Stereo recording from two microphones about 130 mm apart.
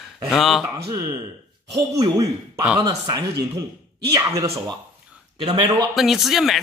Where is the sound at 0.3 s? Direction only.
Centre (ahead or behind).